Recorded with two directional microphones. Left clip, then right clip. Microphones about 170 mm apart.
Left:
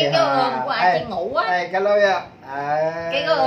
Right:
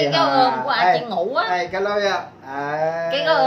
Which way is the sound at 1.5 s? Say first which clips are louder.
Left 3 dB; 25° left (ahead or behind).